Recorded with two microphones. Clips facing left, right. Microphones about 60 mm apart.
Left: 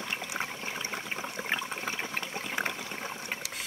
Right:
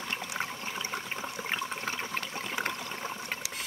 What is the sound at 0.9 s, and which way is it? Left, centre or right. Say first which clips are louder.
Toilet flush: even; centre.